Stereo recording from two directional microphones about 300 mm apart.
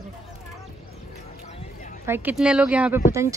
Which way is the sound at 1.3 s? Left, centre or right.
Left.